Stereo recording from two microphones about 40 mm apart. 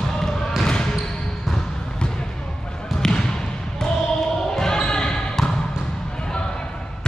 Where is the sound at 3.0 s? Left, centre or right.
Centre.